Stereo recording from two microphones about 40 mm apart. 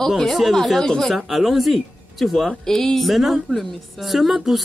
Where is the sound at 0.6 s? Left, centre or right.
Centre.